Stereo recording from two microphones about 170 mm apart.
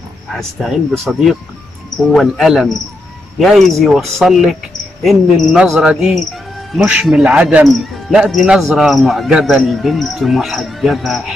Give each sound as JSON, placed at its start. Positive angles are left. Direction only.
{"t": 0.4, "sound": "speech", "side_deg": 0}